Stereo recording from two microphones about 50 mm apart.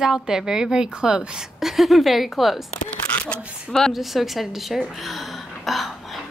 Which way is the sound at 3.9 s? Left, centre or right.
Centre.